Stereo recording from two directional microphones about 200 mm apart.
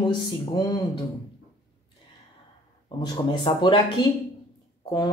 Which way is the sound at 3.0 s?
25° left (ahead or behind).